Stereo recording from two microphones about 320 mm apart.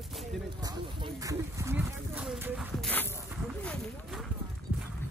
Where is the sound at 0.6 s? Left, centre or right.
Centre.